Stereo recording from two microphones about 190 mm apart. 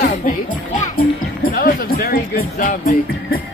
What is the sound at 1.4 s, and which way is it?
Music, 50° left (ahead or behind).